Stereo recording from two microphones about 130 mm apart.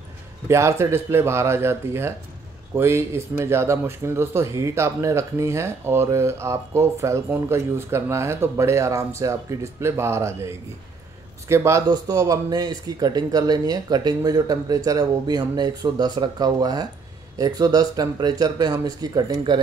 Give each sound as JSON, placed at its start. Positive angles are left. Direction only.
{"t": 0.5, "sound": "speech", "side_deg": -20}